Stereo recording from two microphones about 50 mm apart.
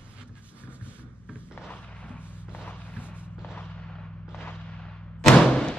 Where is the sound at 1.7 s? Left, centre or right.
Left.